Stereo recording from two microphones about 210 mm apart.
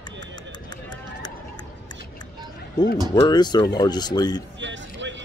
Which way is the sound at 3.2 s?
20° left (ahead or behind).